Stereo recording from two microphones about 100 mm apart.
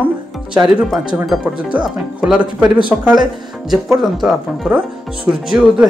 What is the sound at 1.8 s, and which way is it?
Speech, 15° right (ahead or behind).